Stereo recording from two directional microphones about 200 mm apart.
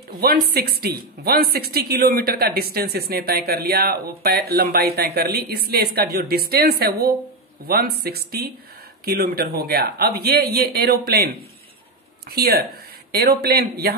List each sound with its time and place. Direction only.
0.1 s speech: 50° right (ahead or behind)